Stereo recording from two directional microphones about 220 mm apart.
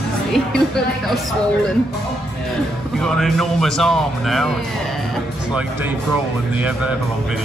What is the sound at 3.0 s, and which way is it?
Speech, centre (ahead or behind).